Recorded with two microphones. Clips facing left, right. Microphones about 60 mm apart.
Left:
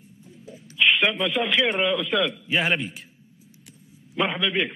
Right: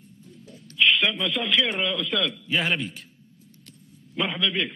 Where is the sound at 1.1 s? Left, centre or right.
Centre.